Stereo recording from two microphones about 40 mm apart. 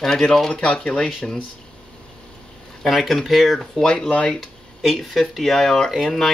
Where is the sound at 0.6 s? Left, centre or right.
Left.